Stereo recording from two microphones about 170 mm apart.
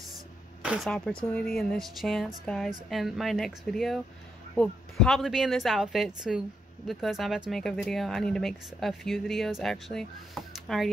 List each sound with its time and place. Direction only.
0.7 s speech: centre (ahead or behind)